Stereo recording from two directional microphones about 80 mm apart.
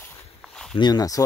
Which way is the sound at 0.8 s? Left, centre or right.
Left.